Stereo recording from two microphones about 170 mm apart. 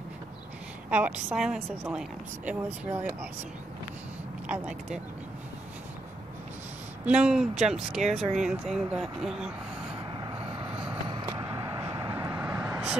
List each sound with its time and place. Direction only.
0.8 s a woman's voice: 5° right (ahead or behind)
4.5 s a woman's voice: 5° right (ahead or behind)
7.1 s speech: 5° right (ahead or behind)
11.2 s vehicle: 20° right (ahead or behind)